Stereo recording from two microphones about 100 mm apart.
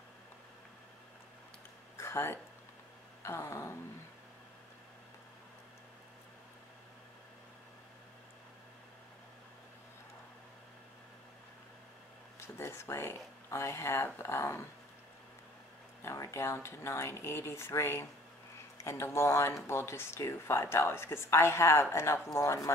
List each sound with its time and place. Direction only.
2.0 s a sound: 25° left (ahead or behind)
12.4 s speech: 25° left (ahead or behind)
16.0 s speech: 30° left (ahead or behind)